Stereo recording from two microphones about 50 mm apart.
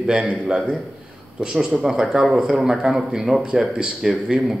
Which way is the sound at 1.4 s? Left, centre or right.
Centre.